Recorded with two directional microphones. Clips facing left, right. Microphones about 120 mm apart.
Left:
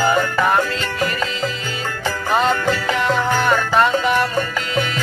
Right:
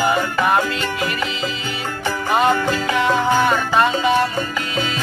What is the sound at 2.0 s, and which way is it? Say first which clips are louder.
Music: right 1 dB; 15° right (ahead or behind).